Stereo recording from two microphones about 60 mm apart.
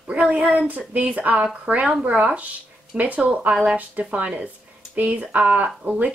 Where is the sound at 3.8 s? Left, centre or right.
Right.